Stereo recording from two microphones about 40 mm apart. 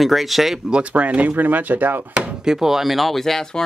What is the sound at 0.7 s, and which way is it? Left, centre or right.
Speech, right.